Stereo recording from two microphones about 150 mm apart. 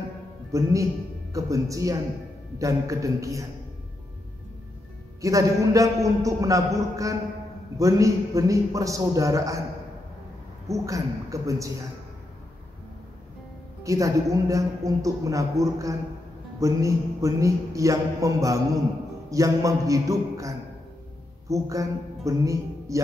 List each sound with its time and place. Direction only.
0.5 s speech: 20° right (ahead or behind)
5.2 s speech: 20° right (ahead or behind)
10.7 s speech: 20° right (ahead or behind)
13.8 s a man's voice: 20° right (ahead or behind)